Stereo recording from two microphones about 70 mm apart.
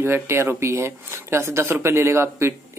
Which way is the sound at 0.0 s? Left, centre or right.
Right.